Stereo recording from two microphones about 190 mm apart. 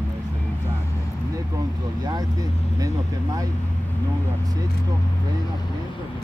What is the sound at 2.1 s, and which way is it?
Speech, 20° right (ahead or behind).